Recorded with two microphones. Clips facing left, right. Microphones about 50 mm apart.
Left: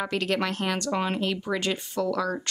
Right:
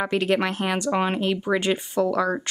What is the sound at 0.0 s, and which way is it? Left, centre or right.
Speech, centre.